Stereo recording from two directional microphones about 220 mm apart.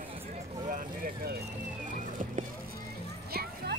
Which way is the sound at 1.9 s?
35° right (ahead or behind).